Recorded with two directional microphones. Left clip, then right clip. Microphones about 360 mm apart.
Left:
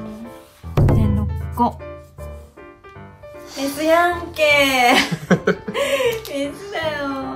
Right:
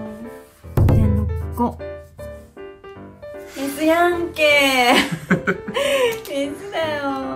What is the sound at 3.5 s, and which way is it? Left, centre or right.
Speech, centre.